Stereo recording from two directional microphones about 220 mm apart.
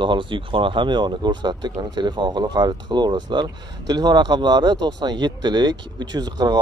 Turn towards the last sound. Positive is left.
turn(degrees=-20)  # may be behind; listen again after turning